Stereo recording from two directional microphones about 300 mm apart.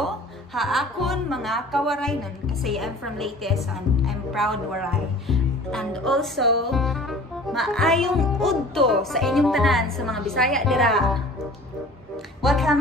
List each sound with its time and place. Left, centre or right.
0.6 s speech: centre
12.4 s speech: centre